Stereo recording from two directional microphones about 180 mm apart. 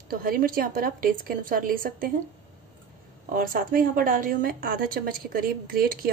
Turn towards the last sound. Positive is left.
turn(degrees=-55)  # may be behind; listen again after turning